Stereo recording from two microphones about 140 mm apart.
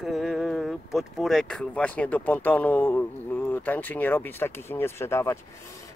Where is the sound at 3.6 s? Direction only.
10° left (ahead or behind).